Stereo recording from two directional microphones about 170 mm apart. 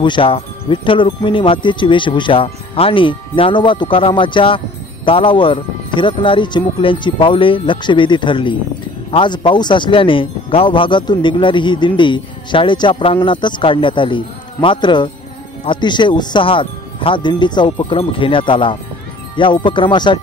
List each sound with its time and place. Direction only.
0.0 s speech: 30° left (ahead or behind)